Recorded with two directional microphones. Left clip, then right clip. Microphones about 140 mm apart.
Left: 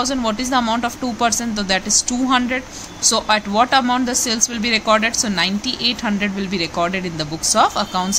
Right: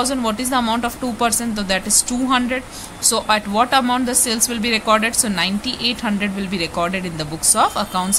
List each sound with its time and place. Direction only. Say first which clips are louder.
0.0 s speech: even; 5° left (ahead or behind)